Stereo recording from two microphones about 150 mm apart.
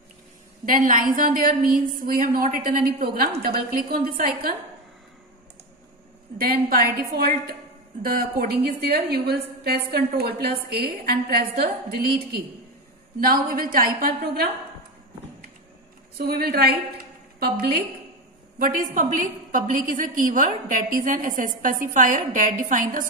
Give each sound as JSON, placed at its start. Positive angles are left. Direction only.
{"t": 0.7, "sound": "a woman's voice", "side_deg": -65}
{"t": 6.3, "sound": "a woman's voice", "side_deg": -70}
{"t": 8.0, "sound": "a woman's voice", "side_deg": -75}
{"t": 13.2, "sound": "a woman's voice", "side_deg": -75}
{"t": 16.2, "sound": "a woman's voice", "side_deg": -90}
{"t": 18.6, "sound": "a woman's voice", "side_deg": -65}